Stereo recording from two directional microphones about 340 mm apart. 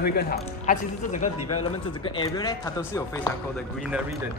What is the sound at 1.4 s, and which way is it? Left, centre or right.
Speech, left.